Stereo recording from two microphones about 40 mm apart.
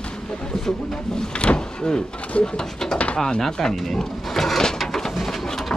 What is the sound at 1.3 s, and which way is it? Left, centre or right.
Speech, left.